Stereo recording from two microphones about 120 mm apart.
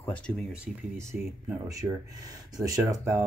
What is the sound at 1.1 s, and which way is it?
Speech, 10° right (ahead or behind).